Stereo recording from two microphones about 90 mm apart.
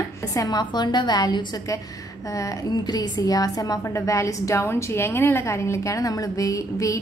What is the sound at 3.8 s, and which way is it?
A woman's voice, 35° left (ahead or behind).